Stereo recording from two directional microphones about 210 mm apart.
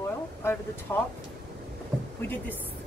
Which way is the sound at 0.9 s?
10° left (ahead or behind).